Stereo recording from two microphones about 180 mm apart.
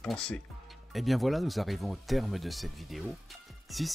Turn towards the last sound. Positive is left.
turn(degrees=0)  # may be behind; listen again after turning